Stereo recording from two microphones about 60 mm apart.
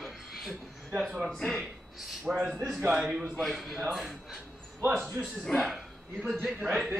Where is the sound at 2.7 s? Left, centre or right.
Centre.